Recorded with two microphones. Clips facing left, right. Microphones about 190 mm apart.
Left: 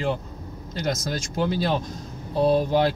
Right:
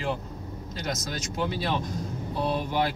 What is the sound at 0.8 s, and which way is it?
Speech, 35° left (ahead or behind).